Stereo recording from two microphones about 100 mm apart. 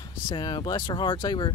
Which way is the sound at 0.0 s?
45° left (ahead or behind).